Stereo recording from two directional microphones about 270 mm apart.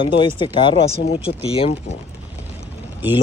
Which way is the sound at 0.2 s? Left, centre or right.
Centre.